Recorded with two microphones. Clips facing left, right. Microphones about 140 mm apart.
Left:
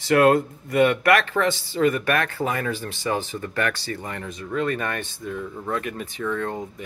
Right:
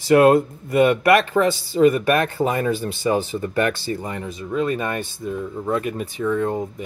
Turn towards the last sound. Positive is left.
turn(degrees=-15)  # may be behind; listen again after turning